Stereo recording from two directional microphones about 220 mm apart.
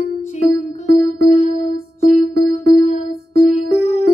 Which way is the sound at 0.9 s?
30° left (ahead or behind).